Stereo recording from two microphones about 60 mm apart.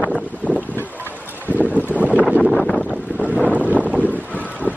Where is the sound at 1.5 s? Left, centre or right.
Right.